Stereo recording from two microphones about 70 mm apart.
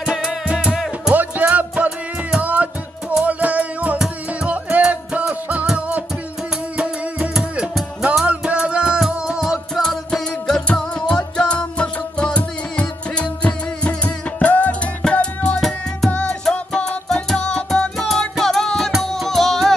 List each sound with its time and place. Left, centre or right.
0.0 s music: centre
9.8 s music: centre